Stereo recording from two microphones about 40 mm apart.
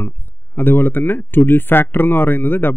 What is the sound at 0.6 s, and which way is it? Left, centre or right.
Speech, left.